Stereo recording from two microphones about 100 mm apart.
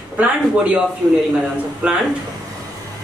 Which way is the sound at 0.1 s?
15° right (ahead or behind).